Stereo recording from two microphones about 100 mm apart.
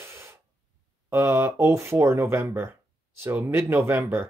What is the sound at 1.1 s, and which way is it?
Speech, 25° right (ahead or behind).